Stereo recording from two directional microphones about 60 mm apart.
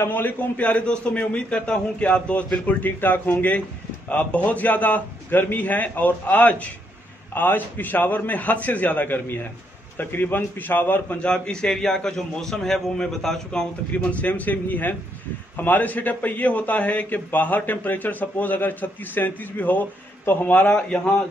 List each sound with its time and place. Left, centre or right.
0.0 s a man's voice: left
11.1 s a man's voice: centre
13.9 s a man's voice: left